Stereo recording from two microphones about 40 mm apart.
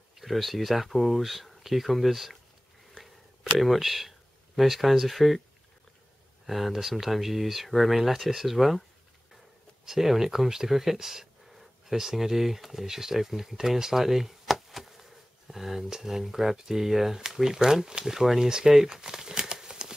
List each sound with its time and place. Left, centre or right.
0.1 s speech: centre
3.5 s speech: centre
6.4 s speech: centre
9.8 s speech: centre